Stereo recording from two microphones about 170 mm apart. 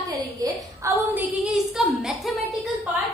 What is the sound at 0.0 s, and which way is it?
A woman's voice, 20° right (ahead or behind).